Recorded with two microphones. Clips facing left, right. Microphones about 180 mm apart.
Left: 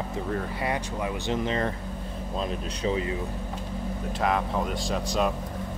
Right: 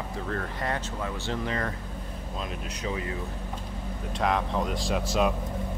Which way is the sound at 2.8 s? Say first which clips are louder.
Left 5 dB; 25° left (ahead or behind).